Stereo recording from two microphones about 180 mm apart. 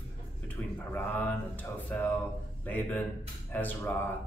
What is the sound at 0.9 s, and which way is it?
A man's voice, 10° left (ahead or behind).